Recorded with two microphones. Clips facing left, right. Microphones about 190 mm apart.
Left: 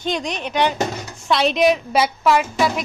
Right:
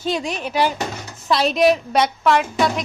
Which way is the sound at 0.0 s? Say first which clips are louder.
Right 1 dB; 5° right (ahead or behind).